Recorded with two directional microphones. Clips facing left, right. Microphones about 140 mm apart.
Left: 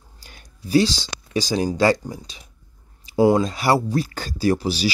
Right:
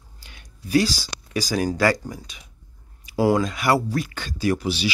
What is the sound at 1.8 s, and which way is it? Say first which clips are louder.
Speech: left 3 dB; 25° left (ahead or behind).